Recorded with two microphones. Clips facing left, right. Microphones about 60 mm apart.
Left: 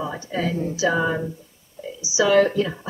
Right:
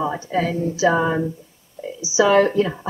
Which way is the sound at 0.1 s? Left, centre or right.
Centre.